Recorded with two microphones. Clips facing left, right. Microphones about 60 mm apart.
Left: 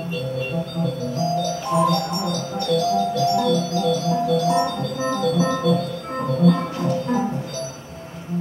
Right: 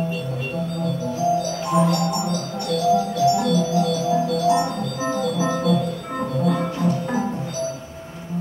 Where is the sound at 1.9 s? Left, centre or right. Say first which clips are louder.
Even; centre.